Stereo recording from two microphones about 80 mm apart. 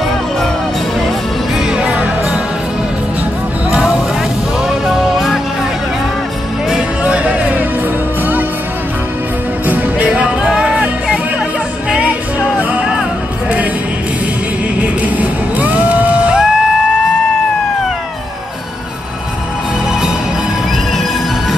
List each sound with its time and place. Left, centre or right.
1.7 s music: centre
3.7 s vehicle: centre
4.6 s music: centre
6.7 s music: centre
9.7 s music: centre
14.8 s music: centre